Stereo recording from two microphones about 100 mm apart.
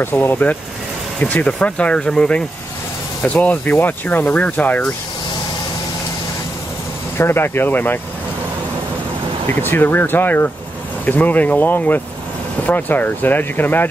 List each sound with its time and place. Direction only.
0.0 s speech: 20° left (ahead or behind)
7.2 s speech: 25° left (ahead or behind)
9.6 s speech: 20° left (ahead or behind)